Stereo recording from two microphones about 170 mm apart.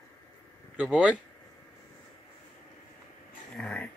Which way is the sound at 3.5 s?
5° left (ahead or behind).